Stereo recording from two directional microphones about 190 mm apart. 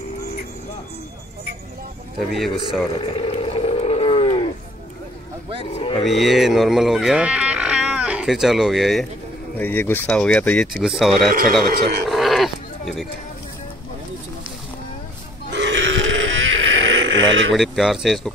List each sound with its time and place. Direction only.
2.1 s speech: centre (ahead or behind)
3.0 s roaring cats: 30° left (ahead or behind)
5.7 s cattle: 30° left (ahead or behind)
6.0 s speech: centre (ahead or behind)
9.6 s speech: 10° left (ahead or behind)
12.1 s sheep: centre (ahead or behind)
15.5 s a sound: 70° right (ahead or behind)
17.6 s speech: centre (ahead or behind)